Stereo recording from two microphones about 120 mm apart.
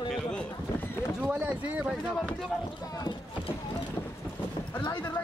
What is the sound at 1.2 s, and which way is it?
Speech, 15° right (ahead or behind).